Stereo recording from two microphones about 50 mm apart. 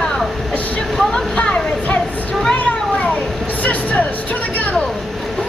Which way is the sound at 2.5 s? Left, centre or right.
Left.